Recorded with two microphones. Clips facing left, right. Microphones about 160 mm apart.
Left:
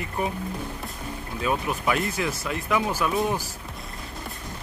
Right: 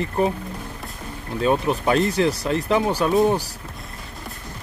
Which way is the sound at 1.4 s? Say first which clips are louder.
Right 6 dB; 30° right (ahead or behind).